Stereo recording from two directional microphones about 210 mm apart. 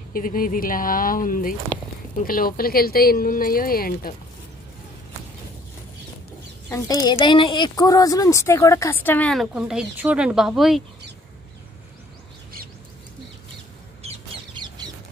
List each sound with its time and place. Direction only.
0.1 s speech: 40° left (ahead or behind)
6.7 s a woman's voice: 15° left (ahead or behind); by 10.8 s centre (ahead or behind)
14.0 s chicken: 20° right (ahead or behind)